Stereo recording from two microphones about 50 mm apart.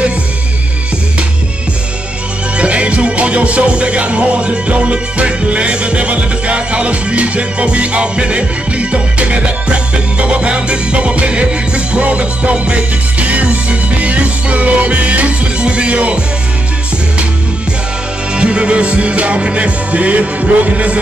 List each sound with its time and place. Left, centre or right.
2.5 s music: right
18.3 s music: right